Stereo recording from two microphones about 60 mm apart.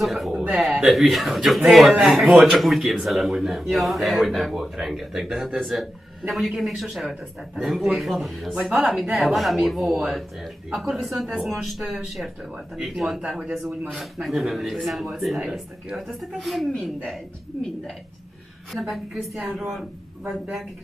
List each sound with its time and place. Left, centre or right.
0.0 s speech: centre
0.3 s a sound: right
0.7 s speech: centre